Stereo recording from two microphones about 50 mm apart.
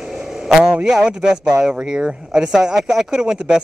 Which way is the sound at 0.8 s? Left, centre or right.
Centre.